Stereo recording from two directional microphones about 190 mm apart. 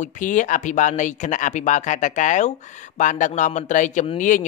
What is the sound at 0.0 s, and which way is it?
A man's voice, 45° left (ahead or behind).